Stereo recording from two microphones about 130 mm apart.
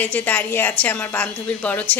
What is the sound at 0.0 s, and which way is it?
A woman's voice, 15° left (ahead or behind).